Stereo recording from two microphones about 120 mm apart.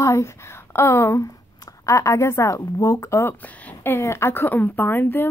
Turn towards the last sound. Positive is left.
turn(degrees=15)  # may be behind; listen again after turning